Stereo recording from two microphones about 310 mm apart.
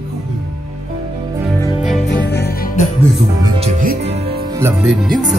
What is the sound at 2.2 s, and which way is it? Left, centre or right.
Music, left.